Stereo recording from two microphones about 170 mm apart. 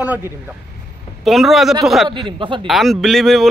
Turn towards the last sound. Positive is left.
turn(degrees=0)  # may be behind; listen again after turning